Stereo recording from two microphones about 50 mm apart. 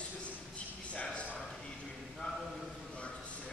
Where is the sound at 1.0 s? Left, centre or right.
Left.